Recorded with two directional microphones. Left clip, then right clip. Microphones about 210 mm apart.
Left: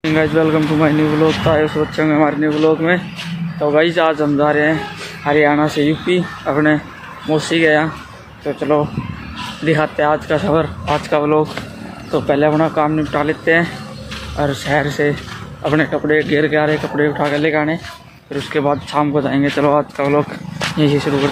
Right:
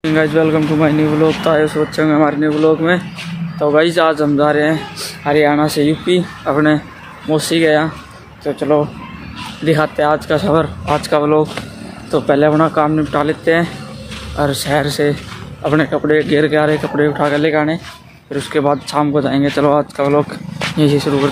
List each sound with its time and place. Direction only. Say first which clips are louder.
0.0 s speech: right 1 dB; 10° right (ahead or behind)
20.7 s speech: right 2 dB; 20° right (ahead or behind)